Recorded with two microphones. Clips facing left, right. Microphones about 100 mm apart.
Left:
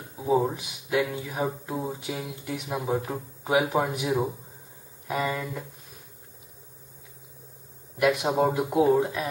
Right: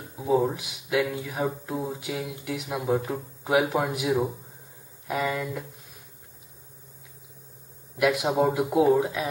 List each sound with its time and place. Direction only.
0.5 s speech: centre (ahead or behind)
8.0 s speech: centre (ahead or behind)